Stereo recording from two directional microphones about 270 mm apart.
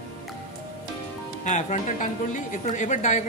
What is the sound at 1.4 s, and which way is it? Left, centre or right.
Music, left.